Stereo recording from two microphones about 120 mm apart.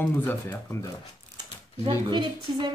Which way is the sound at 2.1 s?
40° right (ahead or behind).